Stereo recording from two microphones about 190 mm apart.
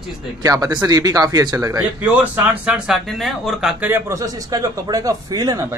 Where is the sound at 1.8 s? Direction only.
10° right (ahead or behind).